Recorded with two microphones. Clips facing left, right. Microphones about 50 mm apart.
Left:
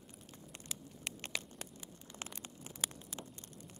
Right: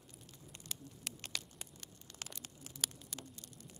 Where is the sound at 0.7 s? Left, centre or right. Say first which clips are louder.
Left 1 dB; centre.